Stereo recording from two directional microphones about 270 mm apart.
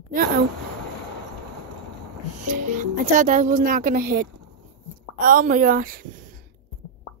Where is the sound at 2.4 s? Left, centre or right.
Right.